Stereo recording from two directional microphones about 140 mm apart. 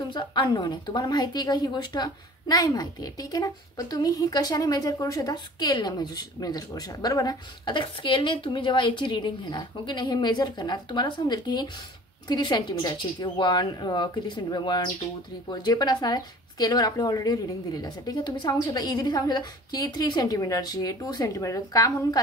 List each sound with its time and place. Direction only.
0.1 s a woman's voice: 35° left (ahead or behind)